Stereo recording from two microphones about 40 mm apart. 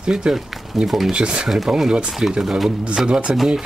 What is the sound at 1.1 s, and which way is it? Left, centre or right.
Speech, right.